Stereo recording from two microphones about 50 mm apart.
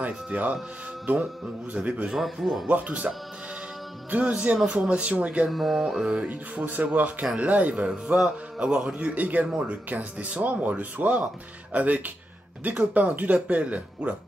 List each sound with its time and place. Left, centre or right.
0.0 s speech: right
1.7 s a man's voice: right
2.0 s a man's voice: centre
2.7 s a man's voice: right
4.1 s a man's voice: right
5.5 s speech: centre
6.2 s a man's voice: right
8.1 s a man's voice: centre